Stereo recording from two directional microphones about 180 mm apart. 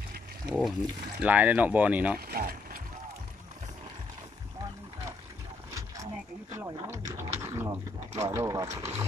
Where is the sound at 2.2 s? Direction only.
55° right (ahead or behind).